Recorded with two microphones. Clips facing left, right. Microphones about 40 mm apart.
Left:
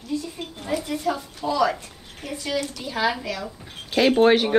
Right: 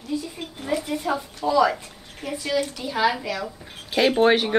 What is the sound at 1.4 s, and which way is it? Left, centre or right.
A woman's voice, centre.